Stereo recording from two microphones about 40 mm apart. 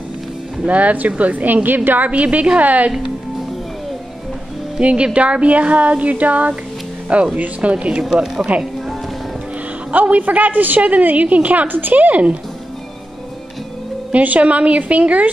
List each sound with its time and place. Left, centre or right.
0.7 s a woman's voice: right
2.0 s a woman's voice: right
4.7 s a woman's voice: right
7.7 s speech: right
9.8 s a woman's voice: right
14.1 s a woman's voice: right